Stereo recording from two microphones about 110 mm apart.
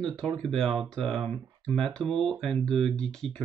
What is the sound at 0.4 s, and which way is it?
Speech, 5° left (ahead or behind).